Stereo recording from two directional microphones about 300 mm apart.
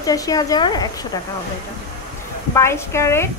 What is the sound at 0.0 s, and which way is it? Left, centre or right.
Speech, centre.